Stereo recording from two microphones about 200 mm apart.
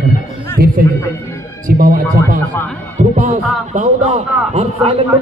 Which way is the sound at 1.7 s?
45° right (ahead or behind).